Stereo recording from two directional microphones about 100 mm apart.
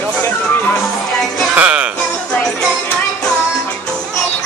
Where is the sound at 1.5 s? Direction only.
10° right (ahead or behind).